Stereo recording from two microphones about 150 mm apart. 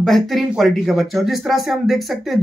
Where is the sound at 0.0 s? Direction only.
Centre (ahead or behind).